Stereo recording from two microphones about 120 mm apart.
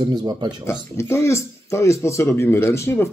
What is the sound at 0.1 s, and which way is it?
Speech, 35° right (ahead or behind).